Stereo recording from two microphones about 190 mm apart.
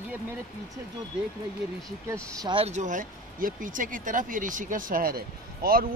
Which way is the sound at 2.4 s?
30° right (ahead or behind).